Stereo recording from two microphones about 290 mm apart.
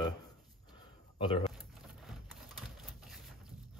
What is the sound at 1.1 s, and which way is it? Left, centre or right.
Speech, centre.